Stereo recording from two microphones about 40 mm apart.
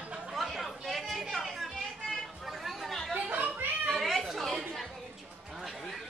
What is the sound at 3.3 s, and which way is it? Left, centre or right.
Children playing, right.